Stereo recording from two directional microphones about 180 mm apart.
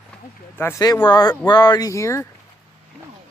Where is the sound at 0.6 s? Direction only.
15° left (ahead or behind).